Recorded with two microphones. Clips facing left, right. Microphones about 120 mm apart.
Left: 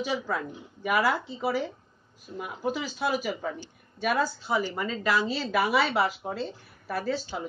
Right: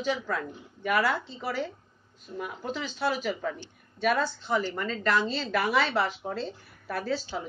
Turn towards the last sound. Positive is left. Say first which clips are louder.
# left 1 dB
turn(degrees=5)  # may be behind; listen again after turning